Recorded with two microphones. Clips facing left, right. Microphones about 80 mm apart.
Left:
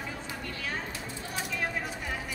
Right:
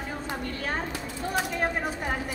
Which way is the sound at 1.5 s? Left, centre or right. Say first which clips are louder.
Right 5 dB; right.